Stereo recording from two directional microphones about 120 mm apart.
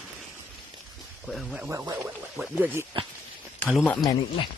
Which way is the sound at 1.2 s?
Centre (ahead or behind).